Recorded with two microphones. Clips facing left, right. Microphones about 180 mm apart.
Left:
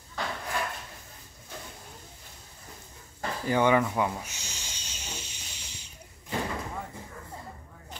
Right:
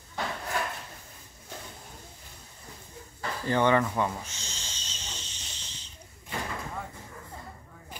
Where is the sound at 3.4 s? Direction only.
10° left (ahead or behind).